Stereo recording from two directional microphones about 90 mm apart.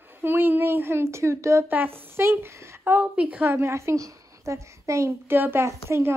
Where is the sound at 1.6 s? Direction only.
20° right (ahead or behind).